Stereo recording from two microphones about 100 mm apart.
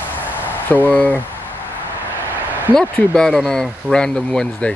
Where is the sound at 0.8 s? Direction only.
15° left (ahead or behind).